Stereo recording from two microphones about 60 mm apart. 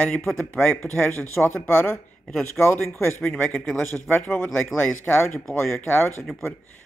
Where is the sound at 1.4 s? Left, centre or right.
Left.